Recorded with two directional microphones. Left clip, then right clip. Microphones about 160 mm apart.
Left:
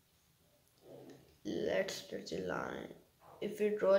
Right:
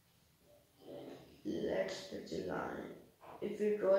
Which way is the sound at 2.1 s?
30° left (ahead or behind).